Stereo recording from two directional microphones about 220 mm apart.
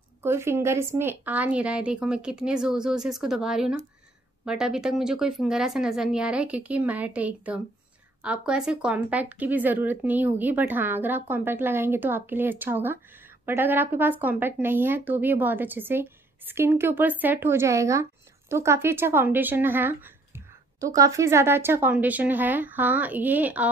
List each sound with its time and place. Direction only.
0.2 s speech: 10° right (ahead or behind)